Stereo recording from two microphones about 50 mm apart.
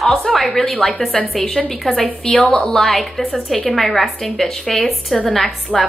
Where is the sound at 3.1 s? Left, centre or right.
Centre.